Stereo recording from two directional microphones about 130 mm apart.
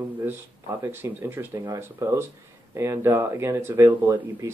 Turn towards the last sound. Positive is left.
turn(degrees=-20)  # may be behind; listen again after turning